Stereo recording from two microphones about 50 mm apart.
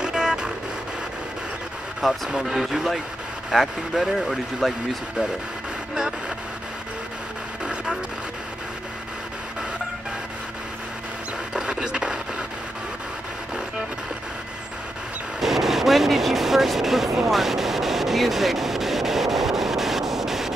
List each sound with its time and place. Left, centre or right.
0.0 s vehicle: centre
2.0 s speech: centre
5.9 s speech: centre
7.6 s vehicle: centre
11.5 s a sound: centre
15.4 s vehicle: centre